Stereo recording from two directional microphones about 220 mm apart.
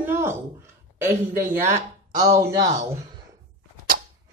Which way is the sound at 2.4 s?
15° right (ahead or behind).